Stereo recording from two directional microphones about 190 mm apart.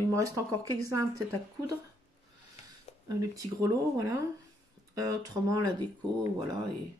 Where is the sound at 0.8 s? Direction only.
15° right (ahead or behind).